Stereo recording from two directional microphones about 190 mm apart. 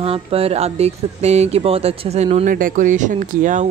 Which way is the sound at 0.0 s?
30° right (ahead or behind).